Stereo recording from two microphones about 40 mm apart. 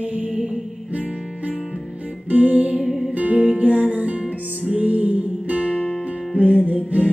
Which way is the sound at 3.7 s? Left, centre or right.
Right.